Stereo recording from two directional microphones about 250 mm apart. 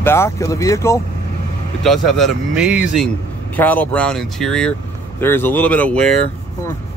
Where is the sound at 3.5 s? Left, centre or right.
Centre.